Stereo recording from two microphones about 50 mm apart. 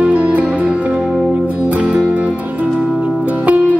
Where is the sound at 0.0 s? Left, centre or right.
Right.